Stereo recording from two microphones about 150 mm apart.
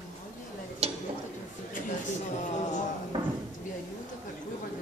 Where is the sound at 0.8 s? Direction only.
40° right (ahead or behind).